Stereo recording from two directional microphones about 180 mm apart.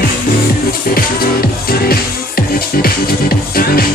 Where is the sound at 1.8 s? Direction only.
55° left (ahead or behind).